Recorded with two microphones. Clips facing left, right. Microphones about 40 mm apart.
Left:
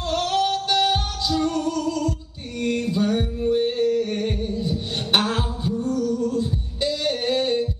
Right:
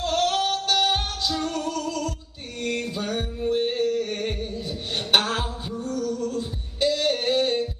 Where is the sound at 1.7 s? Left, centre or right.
Centre.